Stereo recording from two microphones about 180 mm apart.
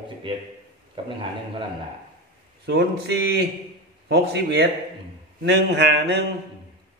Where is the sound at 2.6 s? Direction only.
65° right (ahead or behind).